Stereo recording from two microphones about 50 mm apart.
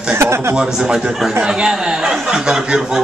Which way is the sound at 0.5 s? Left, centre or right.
Centre.